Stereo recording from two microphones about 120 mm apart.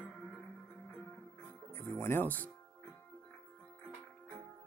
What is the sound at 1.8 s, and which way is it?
Speech, 20° left (ahead or behind).